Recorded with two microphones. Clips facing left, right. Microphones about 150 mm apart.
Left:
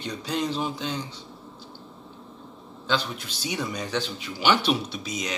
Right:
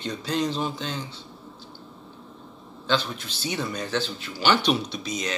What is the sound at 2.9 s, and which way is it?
A man's voice, 10° left (ahead or behind).